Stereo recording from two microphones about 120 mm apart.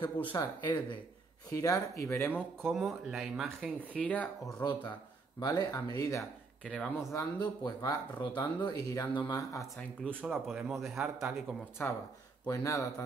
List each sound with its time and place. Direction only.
0.0 s speech: 40° left (ahead or behind)
1.5 s speech: 30° left (ahead or behind)
2.3 s speech: centre (ahead or behind)
3.9 s speech: 10° left (ahead or behind)
4.6 s speech: 40° left (ahead or behind)
6.6 s speech: 10° left (ahead or behind)
7.1 s speech: 30° left (ahead or behind)
10.3 s speech: centre (ahead or behind)
11.8 s speech: 15° left (ahead or behind)
12.4 s speech: 25° left (ahead or behind)